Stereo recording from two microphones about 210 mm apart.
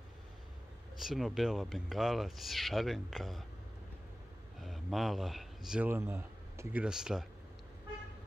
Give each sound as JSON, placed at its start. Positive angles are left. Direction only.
{"t": 0.9, "sound": "speech", "side_deg": 0}
{"t": 4.6, "sound": "speech", "side_deg": 0}